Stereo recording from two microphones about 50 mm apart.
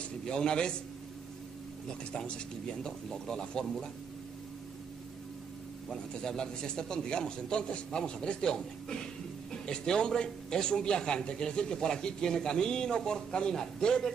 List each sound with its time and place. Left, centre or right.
0.2 s a man's voice: centre
2.1 s a man's voice: centre
5.9 s a man's voice: centre